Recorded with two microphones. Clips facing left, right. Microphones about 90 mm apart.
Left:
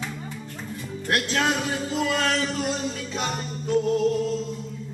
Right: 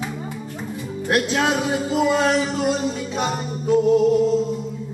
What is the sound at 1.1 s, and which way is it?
Music, 10° right (ahead or behind).